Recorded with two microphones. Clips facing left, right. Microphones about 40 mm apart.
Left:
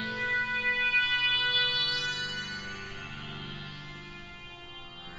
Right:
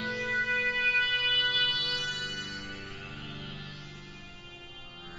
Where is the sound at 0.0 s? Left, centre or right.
Centre.